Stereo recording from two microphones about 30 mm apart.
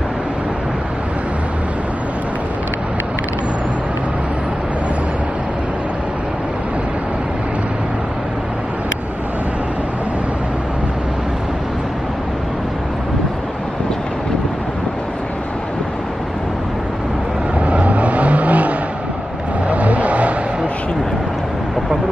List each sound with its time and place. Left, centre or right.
17.6 s vehicle: right